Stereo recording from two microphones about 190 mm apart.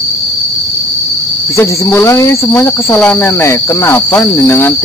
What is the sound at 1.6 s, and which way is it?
Cricket, 15° left (ahead or behind).